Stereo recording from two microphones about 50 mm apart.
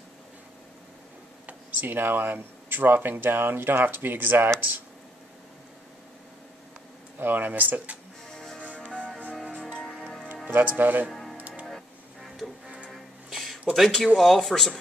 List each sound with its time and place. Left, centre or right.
1.4 s speech: right
7.2 s speech: right
8.3 s music: centre
10.5 s speech: right
11.1 s music: centre
11.3 s music: right
11.6 s music: centre
12.6 s music: centre
13.7 s speech: centre